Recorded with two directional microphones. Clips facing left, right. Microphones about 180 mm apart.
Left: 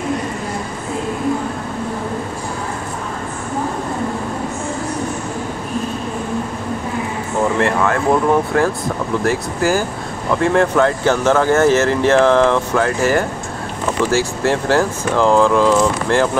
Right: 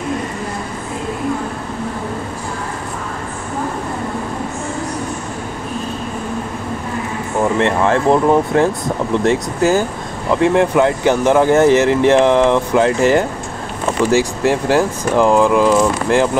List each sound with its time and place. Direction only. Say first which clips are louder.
7.5 s speech: right 4 dB; 25° right (ahead or behind)